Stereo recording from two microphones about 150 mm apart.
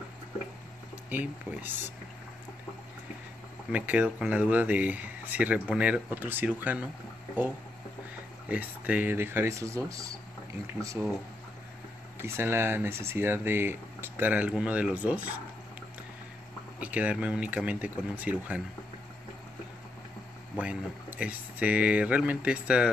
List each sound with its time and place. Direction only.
1.1 s speech: 10° right (ahead or behind)
3.7 s speech: 10° right (ahead or behind)
8.5 s speech: 10° right (ahead or behind)
12.2 s speech: 15° right (ahead or behind)
16.8 s speech: 10° right (ahead or behind)
20.5 s speech: 10° right (ahead or behind)